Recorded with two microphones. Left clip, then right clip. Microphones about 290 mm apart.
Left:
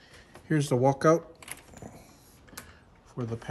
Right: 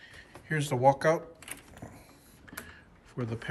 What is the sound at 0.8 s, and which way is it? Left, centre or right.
Camera, left.